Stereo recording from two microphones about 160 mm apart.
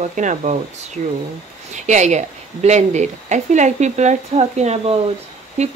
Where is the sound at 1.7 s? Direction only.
45° right (ahead or behind).